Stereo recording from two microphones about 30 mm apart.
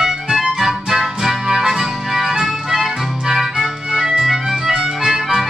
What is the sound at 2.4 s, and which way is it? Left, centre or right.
Music, centre.